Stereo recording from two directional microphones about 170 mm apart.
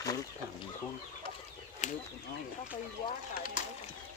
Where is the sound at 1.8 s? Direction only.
45° left (ahead or behind).